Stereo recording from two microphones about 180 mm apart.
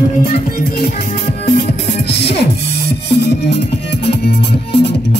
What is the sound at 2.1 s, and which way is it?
Music, 70° left (ahead or behind).